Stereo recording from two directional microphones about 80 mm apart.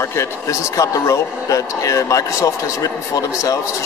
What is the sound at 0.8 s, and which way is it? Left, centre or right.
A man's voice, left.